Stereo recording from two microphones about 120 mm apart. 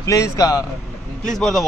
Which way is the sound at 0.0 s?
25° left (ahead or behind).